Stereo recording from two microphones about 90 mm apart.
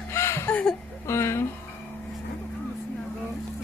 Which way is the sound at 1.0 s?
30° left (ahead or behind).